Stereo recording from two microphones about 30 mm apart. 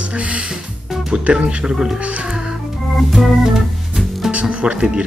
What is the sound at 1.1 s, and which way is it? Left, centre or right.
Speech, right.